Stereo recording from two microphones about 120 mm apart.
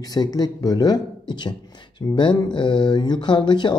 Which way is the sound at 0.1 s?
35° left (ahead or behind).